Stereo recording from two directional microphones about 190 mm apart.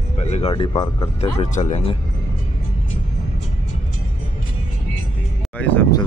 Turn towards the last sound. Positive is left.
turn(degrees=10)  # may be behind; listen again after turning